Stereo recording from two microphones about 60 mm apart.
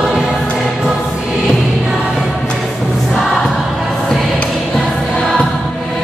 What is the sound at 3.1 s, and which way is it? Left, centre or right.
Choir, centre.